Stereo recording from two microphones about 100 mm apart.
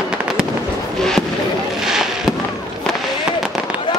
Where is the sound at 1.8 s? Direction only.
5° right (ahead or behind).